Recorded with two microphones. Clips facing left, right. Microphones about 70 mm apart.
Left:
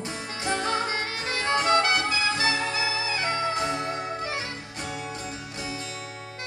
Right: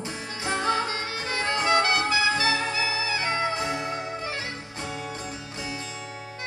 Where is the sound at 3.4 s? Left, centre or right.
Right.